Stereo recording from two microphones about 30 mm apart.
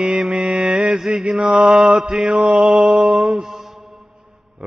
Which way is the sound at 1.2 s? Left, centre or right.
Right.